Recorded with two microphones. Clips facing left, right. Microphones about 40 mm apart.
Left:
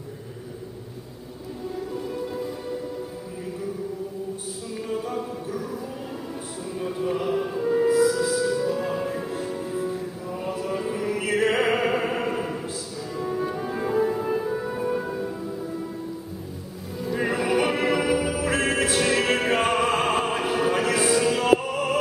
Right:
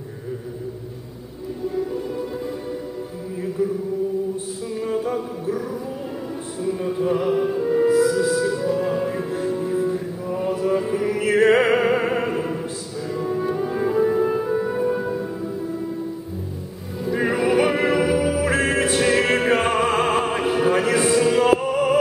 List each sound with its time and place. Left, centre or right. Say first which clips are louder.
1.9 s music: right 3 dB; centre
4.7 s a capella: right 5 dB; centre
6.6 s music: right 6 dB; centre
17.0 s music: right 4 dB; centre